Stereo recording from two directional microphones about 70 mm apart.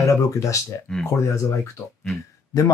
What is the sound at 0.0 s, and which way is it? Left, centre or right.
Speech, left.